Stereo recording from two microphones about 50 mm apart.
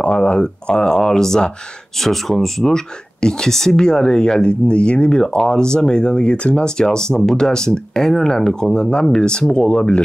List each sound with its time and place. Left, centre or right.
0.0 s speech: left